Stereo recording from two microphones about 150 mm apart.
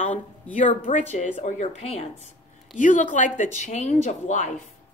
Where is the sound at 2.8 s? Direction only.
60° left (ahead or behind).